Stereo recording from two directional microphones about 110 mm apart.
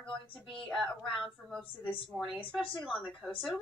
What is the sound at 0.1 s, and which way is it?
A woman's voice, centre (ahead or behind).